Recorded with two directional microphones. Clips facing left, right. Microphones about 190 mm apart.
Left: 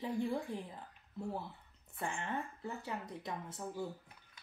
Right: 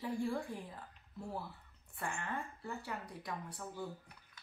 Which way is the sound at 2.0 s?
20° left (ahead or behind).